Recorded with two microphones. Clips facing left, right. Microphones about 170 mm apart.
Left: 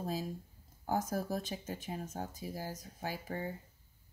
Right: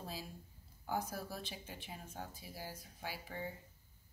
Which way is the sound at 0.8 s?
45° left (ahead or behind).